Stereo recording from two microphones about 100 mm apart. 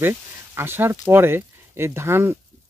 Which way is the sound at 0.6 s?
20° right (ahead or behind).